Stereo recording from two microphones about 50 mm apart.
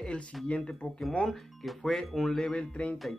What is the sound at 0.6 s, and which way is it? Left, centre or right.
Speech, centre.